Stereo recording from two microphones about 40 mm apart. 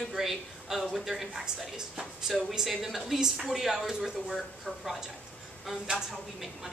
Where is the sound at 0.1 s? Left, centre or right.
Centre.